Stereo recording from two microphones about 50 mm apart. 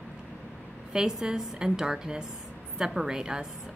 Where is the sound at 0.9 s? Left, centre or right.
Centre.